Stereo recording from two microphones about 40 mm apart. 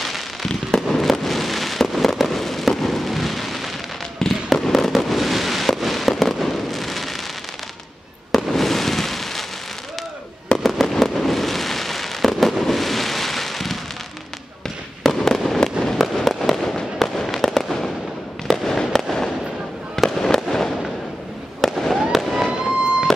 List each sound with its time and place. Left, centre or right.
0.0 s fireworks: centre
8.3 s fireworks: centre
10.6 s fireworks: centre
15.0 s fireworks: centre
20.2 s fireworks: centre
22.5 s fireworks: right